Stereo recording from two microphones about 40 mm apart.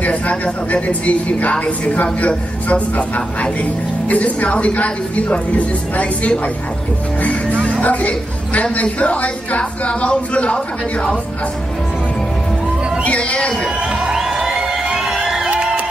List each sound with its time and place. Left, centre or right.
0.0 s a woman's voice: left
4.1 s a woman's voice: left
7.8 s a woman's voice: left
13.0 s speech: left
14.0 s music: centre
15.5 s music: right